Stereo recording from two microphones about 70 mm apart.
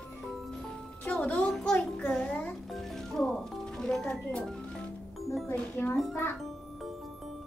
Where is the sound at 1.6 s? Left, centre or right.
Centre.